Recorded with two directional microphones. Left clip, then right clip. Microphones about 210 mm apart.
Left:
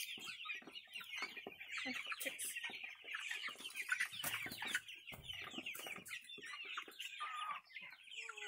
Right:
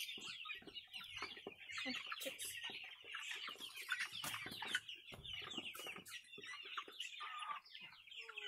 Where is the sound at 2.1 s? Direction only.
35° left (ahead or behind).